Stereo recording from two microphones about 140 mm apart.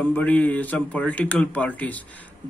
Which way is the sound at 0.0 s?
10° left (ahead or behind).